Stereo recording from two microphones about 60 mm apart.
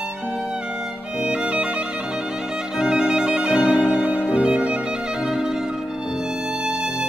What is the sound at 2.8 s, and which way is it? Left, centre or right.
Violin, centre.